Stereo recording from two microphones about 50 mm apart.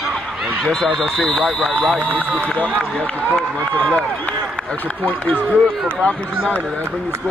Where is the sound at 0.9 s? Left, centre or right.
Centre.